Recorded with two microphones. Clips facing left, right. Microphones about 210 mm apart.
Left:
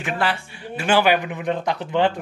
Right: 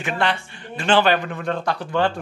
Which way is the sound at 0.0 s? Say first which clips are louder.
Right 1 dB; 5° left (ahead or behind).